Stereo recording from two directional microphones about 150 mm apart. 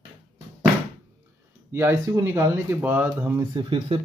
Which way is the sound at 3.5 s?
35° right (ahead or behind).